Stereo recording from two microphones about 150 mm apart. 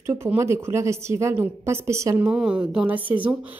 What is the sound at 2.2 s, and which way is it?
Speech, 5° right (ahead or behind).